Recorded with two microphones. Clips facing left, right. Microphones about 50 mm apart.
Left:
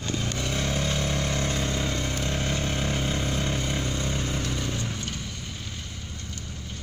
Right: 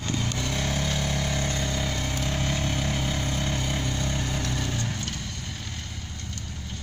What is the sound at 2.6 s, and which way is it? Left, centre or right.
Vehicle, centre.